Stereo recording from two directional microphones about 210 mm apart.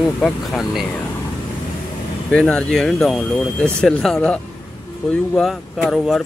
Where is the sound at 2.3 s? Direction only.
5° left (ahead or behind).